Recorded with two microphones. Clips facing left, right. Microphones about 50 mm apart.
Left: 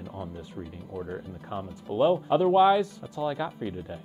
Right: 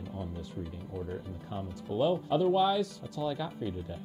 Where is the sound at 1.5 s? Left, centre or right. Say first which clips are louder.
Left 3 dB; left.